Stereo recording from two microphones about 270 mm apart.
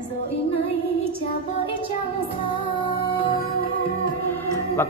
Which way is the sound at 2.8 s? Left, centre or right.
Centre.